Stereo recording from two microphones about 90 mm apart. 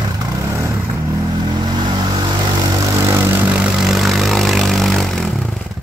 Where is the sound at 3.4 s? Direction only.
10° right (ahead or behind).